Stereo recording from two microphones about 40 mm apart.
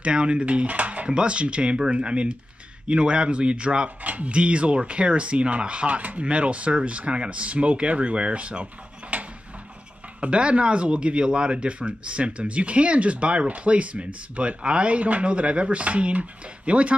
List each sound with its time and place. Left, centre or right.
0.0 s dishes: right
4.0 s speech: right
9.1 s a sound: right
10.2 s speech: right